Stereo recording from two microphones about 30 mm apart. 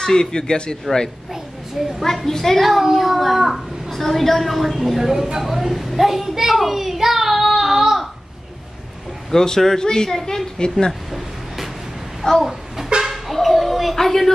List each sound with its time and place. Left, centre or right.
0.0 s speech: left
1.8 s a woman's voice: centre
2.2 s a man's voice: centre
2.6 s a child's voice: centre
3.9 s a woman's voice: centre
9.3 s a man's voice: centre
10.9 s a sound: centre
12.2 s speech: left
13.0 s music: centre
13.9 s a man's voice: centre